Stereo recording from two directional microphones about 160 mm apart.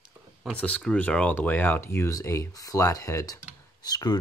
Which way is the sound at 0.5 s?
10° left (ahead or behind).